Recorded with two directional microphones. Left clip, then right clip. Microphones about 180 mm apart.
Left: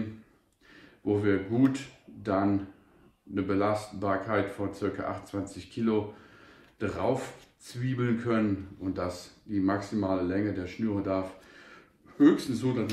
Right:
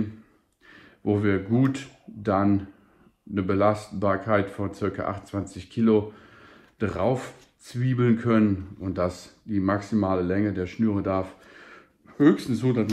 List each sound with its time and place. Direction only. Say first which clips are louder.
0.7 s speech: right 3 dB; 35° right (ahead or behind)
3.6 s speech: right 6 dB; 35° right (ahead or behind)
11.0 s a sound: right 4 dB; 30° right (ahead or behind)